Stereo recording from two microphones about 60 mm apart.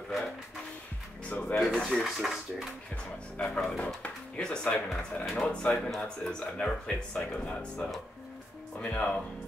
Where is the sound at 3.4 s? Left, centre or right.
Centre.